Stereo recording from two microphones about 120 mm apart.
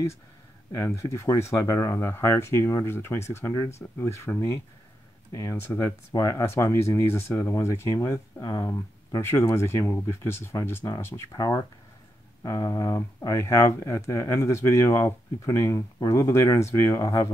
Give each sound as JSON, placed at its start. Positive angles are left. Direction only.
{"t": 0.7, "sound": "speech", "side_deg": 25}
{"t": 11.3, "sound": "speech", "side_deg": 30}